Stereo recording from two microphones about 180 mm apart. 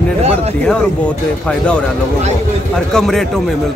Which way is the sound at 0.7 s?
5° left (ahead or behind).